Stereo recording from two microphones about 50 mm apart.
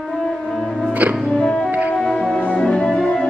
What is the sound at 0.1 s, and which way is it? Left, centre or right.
Music, centre.